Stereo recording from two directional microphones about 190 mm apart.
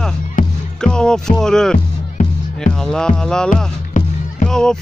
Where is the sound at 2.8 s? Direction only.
5° left (ahead or behind).